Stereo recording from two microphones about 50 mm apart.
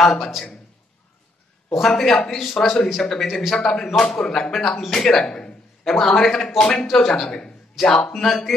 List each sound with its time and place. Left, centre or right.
0.0 s a man's voice: centre
1.9 s a man's voice: centre